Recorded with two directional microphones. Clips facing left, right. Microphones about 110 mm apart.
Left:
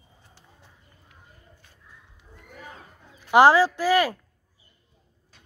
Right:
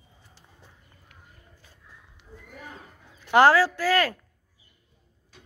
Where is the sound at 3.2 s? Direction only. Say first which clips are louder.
Left 2 dB; 15° left (ahead or behind).